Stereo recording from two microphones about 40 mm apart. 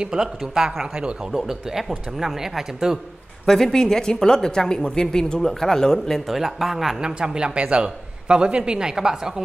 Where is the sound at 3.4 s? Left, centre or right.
Centre.